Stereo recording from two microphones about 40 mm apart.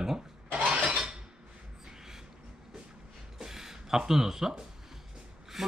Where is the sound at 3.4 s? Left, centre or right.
Centre.